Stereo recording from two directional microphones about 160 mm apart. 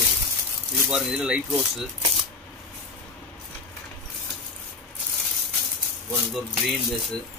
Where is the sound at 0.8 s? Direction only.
5° right (ahead or behind).